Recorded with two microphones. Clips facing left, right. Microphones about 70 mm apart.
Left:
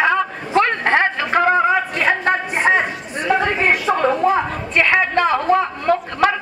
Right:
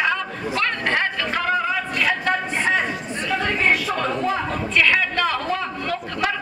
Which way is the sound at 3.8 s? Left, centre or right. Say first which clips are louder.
Left 7 dB; left.